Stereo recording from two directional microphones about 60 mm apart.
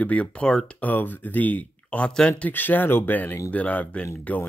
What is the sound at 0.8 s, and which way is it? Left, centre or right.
Speech, left.